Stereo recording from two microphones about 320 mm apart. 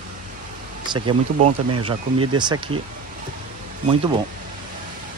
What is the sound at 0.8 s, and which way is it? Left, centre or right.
Speech, centre.